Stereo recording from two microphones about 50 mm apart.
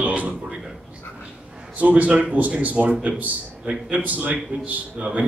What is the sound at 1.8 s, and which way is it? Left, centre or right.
A man's voice, right.